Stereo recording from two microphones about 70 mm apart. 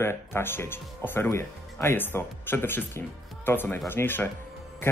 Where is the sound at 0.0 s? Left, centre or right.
Left.